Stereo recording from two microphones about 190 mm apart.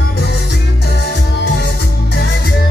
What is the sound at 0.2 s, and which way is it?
Music, 60° left (ahead or behind).